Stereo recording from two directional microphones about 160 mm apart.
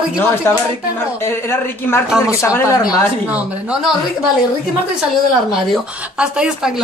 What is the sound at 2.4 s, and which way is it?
Speech, 15° left (ahead or behind).